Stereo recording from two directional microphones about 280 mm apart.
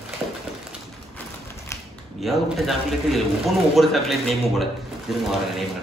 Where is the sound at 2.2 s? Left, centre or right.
Centre.